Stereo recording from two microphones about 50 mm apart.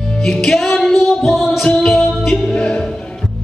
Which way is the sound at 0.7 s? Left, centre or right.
Centre.